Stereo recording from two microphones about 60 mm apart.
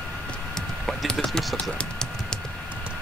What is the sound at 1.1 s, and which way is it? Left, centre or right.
Speech, centre.